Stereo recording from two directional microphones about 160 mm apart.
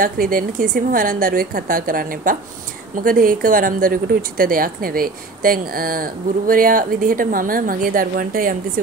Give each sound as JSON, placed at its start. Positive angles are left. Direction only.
{"t": 0.0, "sound": "speech", "side_deg": -60}